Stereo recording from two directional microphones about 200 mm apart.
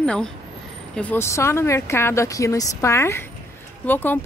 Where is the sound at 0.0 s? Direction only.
5° left (ahead or behind).